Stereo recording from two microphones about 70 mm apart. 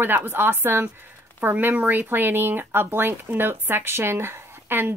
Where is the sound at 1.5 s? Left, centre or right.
Right.